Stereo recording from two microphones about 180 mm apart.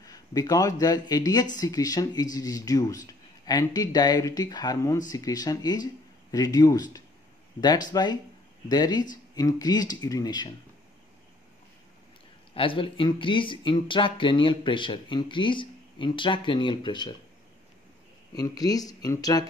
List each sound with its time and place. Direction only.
0.0 s speech: 20° left (ahead or behind)
12.5 s speech: 30° left (ahead or behind)
18.3 s speech: 20° left (ahead or behind)